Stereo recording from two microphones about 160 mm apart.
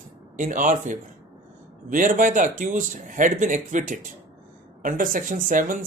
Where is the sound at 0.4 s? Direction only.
55° right (ahead or behind).